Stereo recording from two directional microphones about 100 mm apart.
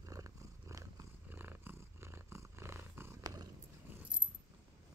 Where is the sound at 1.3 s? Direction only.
20° right (ahead or behind).